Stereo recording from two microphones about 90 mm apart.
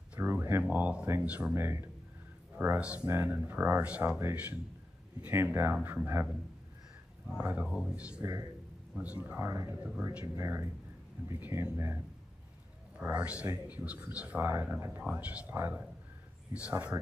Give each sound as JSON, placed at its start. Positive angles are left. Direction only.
{"t": 0.1, "sound": "a sound", "side_deg": -25}
{"t": 0.7, "sound": "speech", "side_deg": -15}
{"t": 1.5, "sound": "speech", "side_deg": -25}
{"t": 2.8, "sound": "speech", "side_deg": -10}
{"t": 3.1, "sound": "speech", "side_deg": -25}
{"t": 7.4, "sound": "speech", "side_deg": -15}
{"t": 8.2, "sound": "speech", "side_deg": -40}
{"t": 8.9, "sound": "speech", "side_deg": -15}
{"t": 9.8, "sound": "speech", "side_deg": -15}
{"t": 10.2, "sound": "speech", "side_deg": -30}
{"t": 13.0, "sound": "speech", "side_deg": -15}
{"t": 16.5, "sound": "speech", "side_deg": -15}